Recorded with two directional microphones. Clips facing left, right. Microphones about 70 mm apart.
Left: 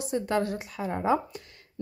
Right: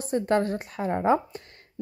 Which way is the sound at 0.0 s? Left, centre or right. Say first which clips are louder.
Right 3 dB; right.